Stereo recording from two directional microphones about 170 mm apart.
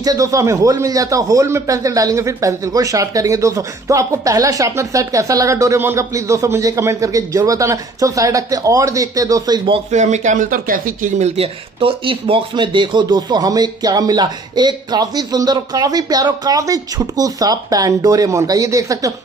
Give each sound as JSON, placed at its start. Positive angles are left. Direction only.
{"t": 0.0, "sound": "a man's voice", "side_deg": -20}
{"t": 9.8, "sound": "speech", "side_deg": -45}
{"t": 11.3, "sound": "a man's voice", "side_deg": -35}